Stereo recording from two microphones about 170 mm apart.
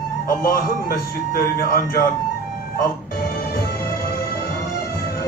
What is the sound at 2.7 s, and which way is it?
Music, 65° left (ahead or behind).